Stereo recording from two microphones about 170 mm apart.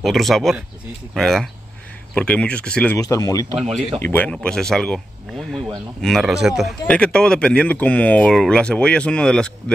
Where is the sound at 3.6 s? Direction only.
35° right (ahead or behind).